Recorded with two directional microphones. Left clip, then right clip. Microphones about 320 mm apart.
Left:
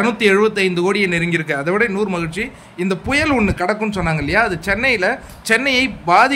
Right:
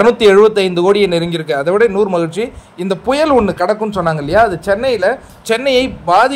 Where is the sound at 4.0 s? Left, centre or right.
Centre.